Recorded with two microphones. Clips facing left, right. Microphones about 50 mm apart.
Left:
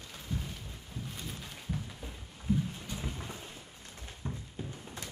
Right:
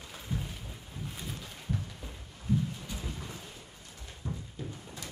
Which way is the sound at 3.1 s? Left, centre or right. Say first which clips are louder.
Even; left.